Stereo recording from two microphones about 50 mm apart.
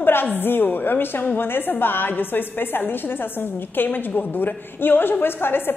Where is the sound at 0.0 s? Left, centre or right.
Left.